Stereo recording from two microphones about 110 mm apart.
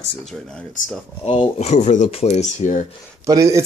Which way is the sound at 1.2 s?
65° left (ahead or behind).